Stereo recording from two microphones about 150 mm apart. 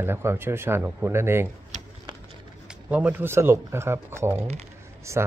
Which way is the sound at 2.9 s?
10° right (ahead or behind).